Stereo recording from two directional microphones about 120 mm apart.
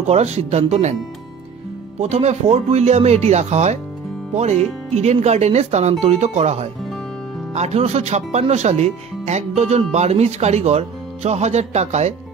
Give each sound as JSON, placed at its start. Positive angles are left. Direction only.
{"t": 0.0, "sound": "speech", "side_deg": -65}
{"t": 2.0, "sound": "speech", "side_deg": -65}